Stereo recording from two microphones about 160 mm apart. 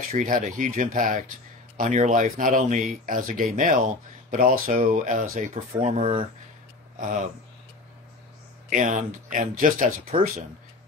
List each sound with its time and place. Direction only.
0.1 s speech: 50° right (ahead or behind)
5.8 s speech: 45° right (ahead or behind)
8.6 s speech: 55° right (ahead or behind)